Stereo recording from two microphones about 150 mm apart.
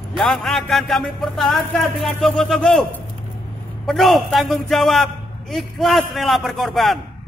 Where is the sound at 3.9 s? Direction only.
Centre (ahead or behind).